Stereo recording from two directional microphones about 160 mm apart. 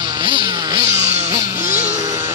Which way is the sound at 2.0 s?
25° right (ahead or behind).